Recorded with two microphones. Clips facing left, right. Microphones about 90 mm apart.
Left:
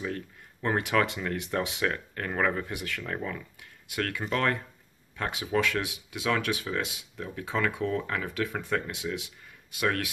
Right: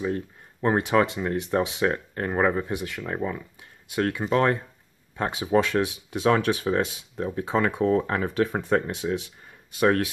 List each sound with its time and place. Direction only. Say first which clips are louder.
0.0 s speech: right 6 dB; 25° right (ahead or behind)